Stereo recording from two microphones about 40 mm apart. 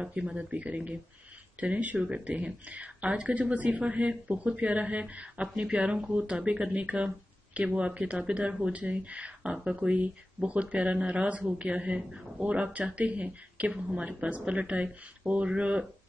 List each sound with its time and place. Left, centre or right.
0.0 s speech: right
9.8 s speech: right